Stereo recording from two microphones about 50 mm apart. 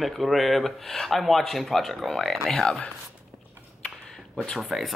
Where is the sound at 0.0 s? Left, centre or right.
Centre.